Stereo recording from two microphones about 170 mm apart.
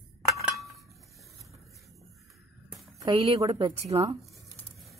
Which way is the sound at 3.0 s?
25° right (ahead or behind).